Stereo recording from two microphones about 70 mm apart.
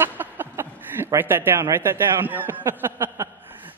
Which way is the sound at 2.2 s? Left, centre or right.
Right.